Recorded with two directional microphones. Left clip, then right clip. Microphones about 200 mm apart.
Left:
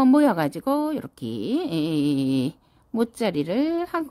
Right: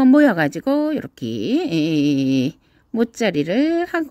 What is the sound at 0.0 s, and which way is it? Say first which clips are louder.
Speech: right 5 dB; 10° right (ahead or behind).